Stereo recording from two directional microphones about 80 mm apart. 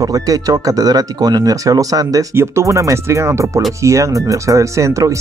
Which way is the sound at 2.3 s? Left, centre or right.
Right.